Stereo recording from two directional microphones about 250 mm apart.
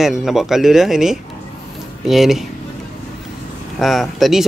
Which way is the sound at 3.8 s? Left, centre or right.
Centre.